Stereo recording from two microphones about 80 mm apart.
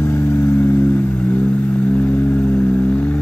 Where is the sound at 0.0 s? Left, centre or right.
Left.